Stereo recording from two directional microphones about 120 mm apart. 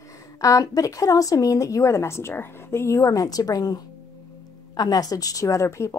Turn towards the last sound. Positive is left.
turn(degrees=25)  # may be behind; listen again after turning